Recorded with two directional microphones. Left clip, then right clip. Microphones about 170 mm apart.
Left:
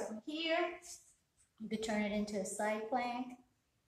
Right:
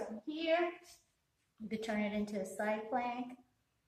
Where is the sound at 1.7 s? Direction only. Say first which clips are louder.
Left 1 dB; 15° right (ahead or behind).